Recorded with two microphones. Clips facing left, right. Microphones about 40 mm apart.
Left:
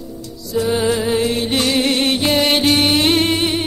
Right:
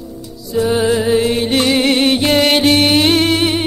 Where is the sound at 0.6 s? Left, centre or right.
Centre.